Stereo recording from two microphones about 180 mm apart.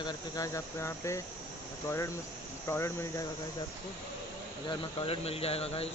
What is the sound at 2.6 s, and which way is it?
Speech, 15° left (ahead or behind).